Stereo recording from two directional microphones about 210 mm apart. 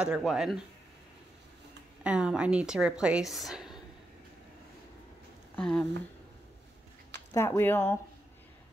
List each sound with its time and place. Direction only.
0.0 s speech: 5° right (ahead or behind)
2.0 s speech: 5° right (ahead or behind)
5.6 s speech: 5° left (ahead or behind)
7.3 s speech: 10° left (ahead or behind)